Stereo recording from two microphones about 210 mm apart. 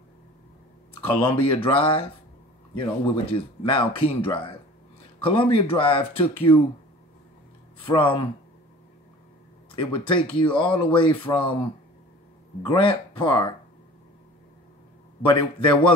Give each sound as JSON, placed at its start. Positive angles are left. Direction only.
{"t": 1.2, "sound": "speech", "side_deg": 25}
{"t": 7.8, "sound": "speech", "side_deg": 25}
{"t": 9.7, "sound": "speech", "side_deg": 25}
{"t": 12.6, "sound": "speech", "side_deg": 25}
{"t": 15.2, "sound": "speech", "side_deg": 25}